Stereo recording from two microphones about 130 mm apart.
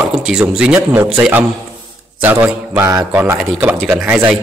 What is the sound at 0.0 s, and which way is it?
Speech, 5° right (ahead or behind).